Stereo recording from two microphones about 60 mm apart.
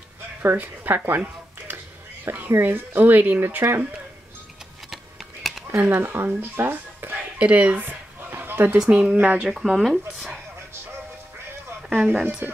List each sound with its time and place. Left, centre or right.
0.4 s speech: right
4.9 s a sound: centre
5.9 s speech: right
7.3 s a sound: right
8.7 s speech: centre
9.1 s speech: right
9.5 s speech: centre
12.1 s speech: right